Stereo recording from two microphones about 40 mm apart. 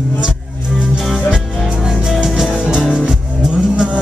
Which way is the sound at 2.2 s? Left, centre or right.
Centre.